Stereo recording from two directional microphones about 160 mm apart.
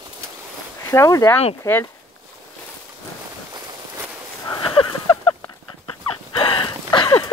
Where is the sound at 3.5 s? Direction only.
20° right (ahead or behind).